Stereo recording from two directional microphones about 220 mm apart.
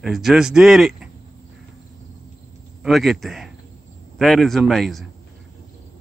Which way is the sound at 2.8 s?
Centre (ahead or behind).